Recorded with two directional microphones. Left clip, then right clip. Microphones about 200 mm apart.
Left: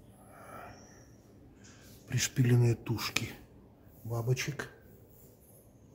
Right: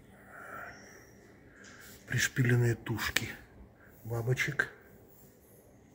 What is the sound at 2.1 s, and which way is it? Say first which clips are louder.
Speech: right 2 dB; 20° left (ahead or behind).